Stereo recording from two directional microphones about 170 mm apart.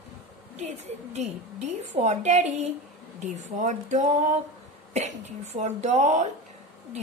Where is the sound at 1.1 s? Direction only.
40° right (ahead or behind).